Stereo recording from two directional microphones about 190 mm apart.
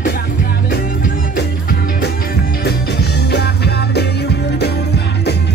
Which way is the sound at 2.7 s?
60° left (ahead or behind).